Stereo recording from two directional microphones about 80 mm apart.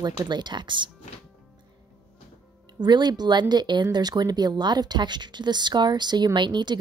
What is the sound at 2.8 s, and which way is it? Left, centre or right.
Speech, right.